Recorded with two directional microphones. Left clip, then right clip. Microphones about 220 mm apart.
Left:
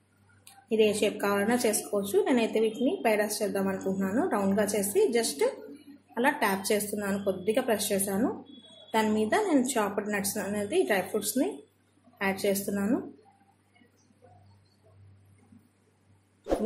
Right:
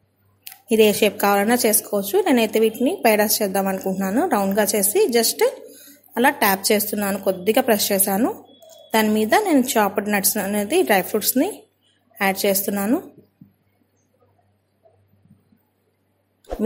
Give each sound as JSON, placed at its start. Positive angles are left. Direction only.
{"t": 0.5, "sound": "a woman's voice", "side_deg": -45}